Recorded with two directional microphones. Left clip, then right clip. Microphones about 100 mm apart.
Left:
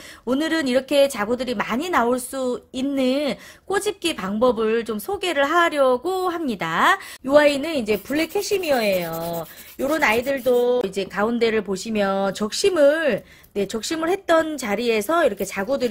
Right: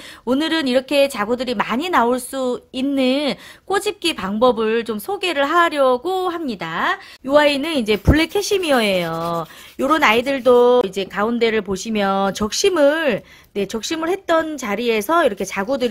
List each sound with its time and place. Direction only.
0.3 s speech: 20° right (ahead or behind); by 6.7 s centre (ahead or behind)
6.7 s speech: 20° left (ahead or behind)
7.4 s a woman's voice: 15° right (ahead or behind)
7.7 s speech: 35° right (ahead or behind)
10.4 s a sound: 55° right (ahead or behind)
10.8 s speech: 15° right (ahead or behind)